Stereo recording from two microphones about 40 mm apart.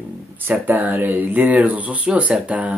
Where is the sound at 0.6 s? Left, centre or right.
Right.